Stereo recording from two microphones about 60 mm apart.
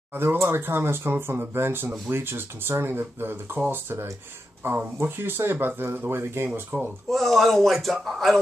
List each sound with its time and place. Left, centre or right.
0.1 s speech: right
7.1 s speech: centre